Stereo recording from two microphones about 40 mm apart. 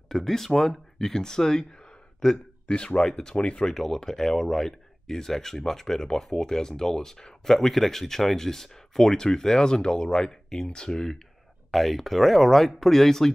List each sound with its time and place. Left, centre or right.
0.1 s speech: centre
2.7 s speech: left
3.1 s speech: centre
11.7 s speech: centre